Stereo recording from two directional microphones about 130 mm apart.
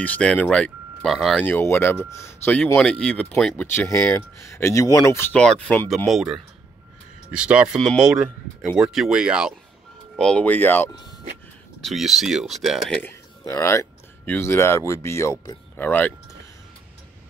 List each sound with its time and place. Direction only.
0.0 s speech: 10° left (ahead or behind)
1.4 s speech: 15° left (ahead or behind)
2.8 s speech: 10° left (ahead or behind)
3.6 s speech: 20° left (ahead or behind)
5.3 s speech: 5° left (ahead or behind)
10.1 s speech: 5° left (ahead or behind)
11.8 s speech: centre (ahead or behind)
13.5 s speech: 20° left (ahead or behind)